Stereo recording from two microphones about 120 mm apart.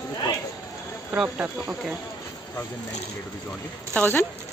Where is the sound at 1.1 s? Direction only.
10° right (ahead or behind).